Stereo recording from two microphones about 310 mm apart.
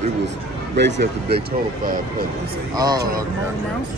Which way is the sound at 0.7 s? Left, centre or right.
Right.